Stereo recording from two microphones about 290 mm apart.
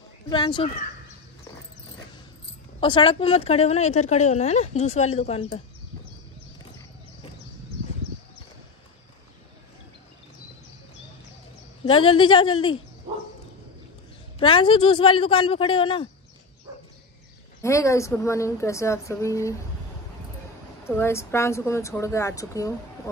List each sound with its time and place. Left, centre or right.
0.3 s a woman's voice: centre
2.8 s speech: centre
11.8 s a woman's voice: centre
14.4 s a woman's voice: centre
17.6 s a woman's voice: centre
20.8 s a woman's voice: centre